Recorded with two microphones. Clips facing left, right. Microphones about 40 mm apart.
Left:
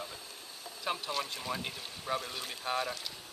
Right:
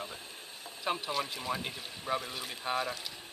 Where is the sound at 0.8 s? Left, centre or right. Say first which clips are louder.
Right 2 dB; centre.